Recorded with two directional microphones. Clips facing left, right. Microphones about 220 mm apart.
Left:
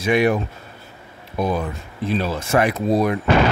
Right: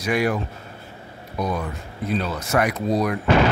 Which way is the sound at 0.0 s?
25° left (ahead or behind).